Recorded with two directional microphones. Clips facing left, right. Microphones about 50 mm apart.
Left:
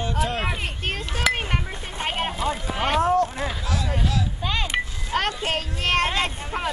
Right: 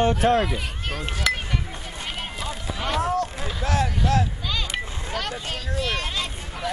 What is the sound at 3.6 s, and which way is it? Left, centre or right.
Speech, right.